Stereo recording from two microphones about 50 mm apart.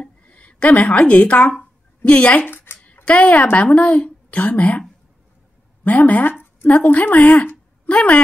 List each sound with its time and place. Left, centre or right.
0.0 s a woman's voice: left
2.4 s a sound: left
3.1 s a woman's voice: left
5.9 s a woman's voice: left
7.9 s a woman's voice: left